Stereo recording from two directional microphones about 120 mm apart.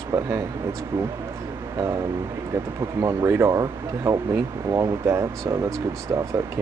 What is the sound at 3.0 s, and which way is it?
Speech, 20° right (ahead or behind).